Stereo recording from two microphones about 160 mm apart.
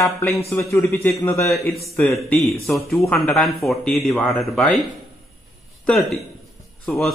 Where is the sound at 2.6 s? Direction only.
Centre (ahead or behind).